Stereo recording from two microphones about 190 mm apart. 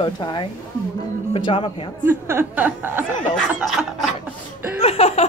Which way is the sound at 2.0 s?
10° right (ahead or behind).